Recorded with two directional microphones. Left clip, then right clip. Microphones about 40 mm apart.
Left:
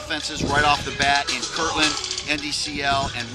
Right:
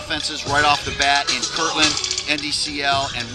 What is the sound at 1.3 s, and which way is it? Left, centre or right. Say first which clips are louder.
Speech: right 3 dB; right.